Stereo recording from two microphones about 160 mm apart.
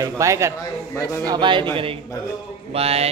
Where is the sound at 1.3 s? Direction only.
30° right (ahead or behind).